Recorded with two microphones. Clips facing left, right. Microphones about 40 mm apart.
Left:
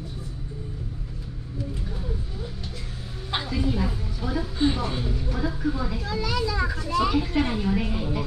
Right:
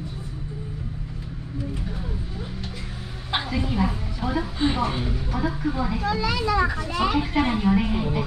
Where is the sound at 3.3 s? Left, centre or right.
Right.